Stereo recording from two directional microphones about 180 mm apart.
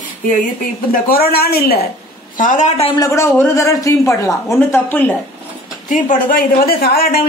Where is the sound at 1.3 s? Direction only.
60° left (ahead or behind).